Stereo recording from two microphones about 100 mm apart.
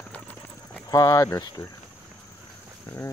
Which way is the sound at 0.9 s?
35° left (ahead or behind).